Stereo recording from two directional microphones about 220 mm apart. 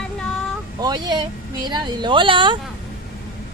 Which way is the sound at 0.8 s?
20° right (ahead or behind).